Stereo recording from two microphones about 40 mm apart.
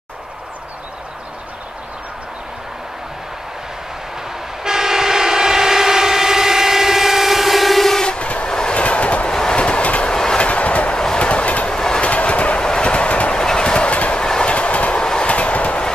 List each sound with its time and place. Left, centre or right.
4.6 s train: centre
8.0 s train: left
8.7 s train: left
9.3 s train: centre
9.6 s train: left
10.0 s train: centre
10.4 s train: left
11.7 s train: centre
12.0 s train: left
12.5 s train: centre
13.4 s train: centre
14.1 s train: centre
14.5 s train: left
15.0 s train: left